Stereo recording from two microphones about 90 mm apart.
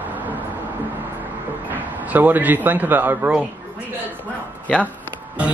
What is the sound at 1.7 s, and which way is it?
Speech, 20° right (ahead or behind).